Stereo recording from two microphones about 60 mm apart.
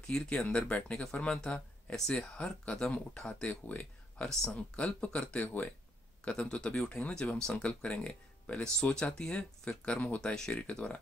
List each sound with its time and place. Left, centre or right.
0.0 s speech: centre
10.2 s speech: centre